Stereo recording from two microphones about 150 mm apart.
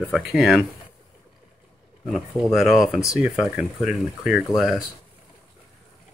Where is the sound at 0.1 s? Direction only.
5° right (ahead or behind).